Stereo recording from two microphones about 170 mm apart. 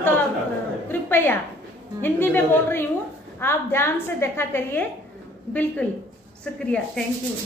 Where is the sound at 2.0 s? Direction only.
10° left (ahead or behind).